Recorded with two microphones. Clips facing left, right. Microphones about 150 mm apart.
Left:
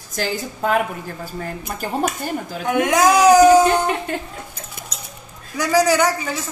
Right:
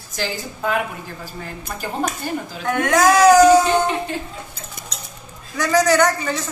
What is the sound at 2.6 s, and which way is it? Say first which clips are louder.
Speech: even; 15° left (ahead or behind).